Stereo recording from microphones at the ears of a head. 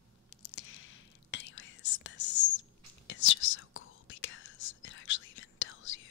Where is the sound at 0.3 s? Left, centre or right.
Left.